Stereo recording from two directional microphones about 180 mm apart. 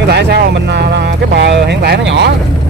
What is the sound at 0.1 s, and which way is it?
Music, 65° right (ahead or behind).